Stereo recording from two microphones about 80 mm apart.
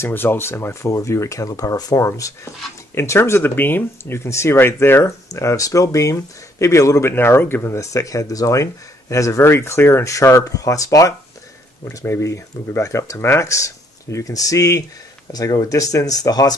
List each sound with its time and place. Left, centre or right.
0.0 s speech: left